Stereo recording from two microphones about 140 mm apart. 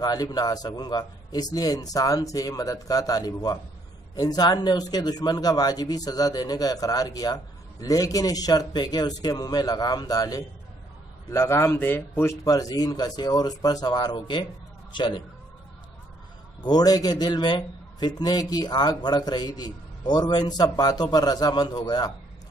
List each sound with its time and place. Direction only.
0.0 s a man's voice: 30° left (ahead or behind)
16.6 s a man's voice: 30° left (ahead or behind)